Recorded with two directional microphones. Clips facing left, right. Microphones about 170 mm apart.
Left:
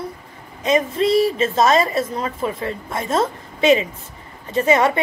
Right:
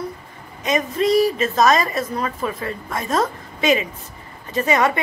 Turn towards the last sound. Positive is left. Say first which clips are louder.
# left 2 dB
turn(degrees=25)  # may be behind; listen again after turning